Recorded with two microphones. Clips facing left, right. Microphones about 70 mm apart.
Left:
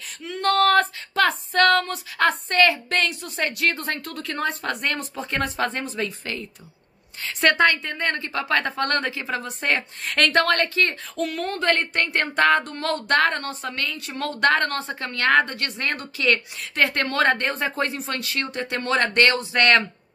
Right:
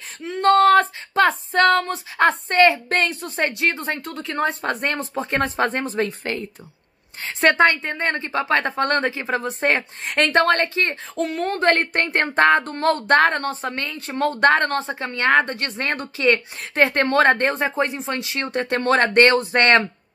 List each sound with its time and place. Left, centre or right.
0.2 s speech: right
7.2 s speech: right
11.7 s speech: right
18.5 s speech: right